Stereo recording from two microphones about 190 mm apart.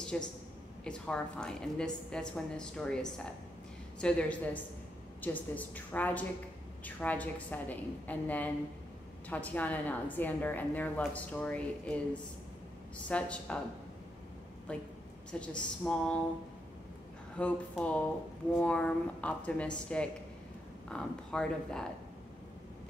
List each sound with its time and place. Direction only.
0.1 s a woman's voice: 5° left (ahead or behind)
14.7 s a woman's voice: 5° left (ahead or behind)
17.4 s a woman's voice: 5° left (ahead or behind)